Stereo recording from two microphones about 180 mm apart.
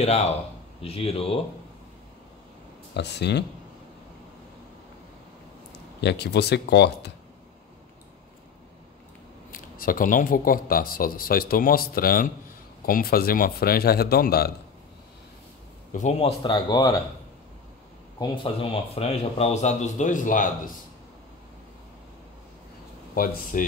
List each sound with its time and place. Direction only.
0.0 s speech: 35° left (ahead or behind)
2.9 s speech: 70° left (ahead or behind)
5.9 s speech: 70° left (ahead or behind)
9.5 s speech: 50° left (ahead or behind)
15.9 s speech: 40° left (ahead or behind); by 16.9 s 25° left (ahead or behind)
18.2 s speech: 30° left (ahead or behind); by 20.7 s 45° left (ahead or behind)
23.1 s speech: 50° left (ahead or behind)